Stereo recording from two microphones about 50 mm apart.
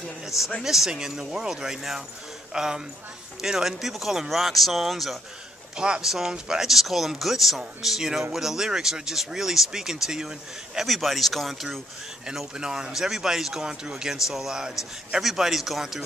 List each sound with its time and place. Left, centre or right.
0.6 s speech: centre
5.8 s speech: centre
12.5 s speech: centre